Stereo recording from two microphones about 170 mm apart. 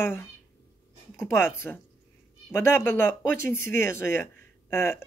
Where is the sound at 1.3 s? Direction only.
15° left (ahead or behind).